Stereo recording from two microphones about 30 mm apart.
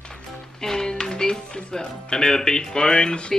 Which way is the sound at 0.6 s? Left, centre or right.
Centre.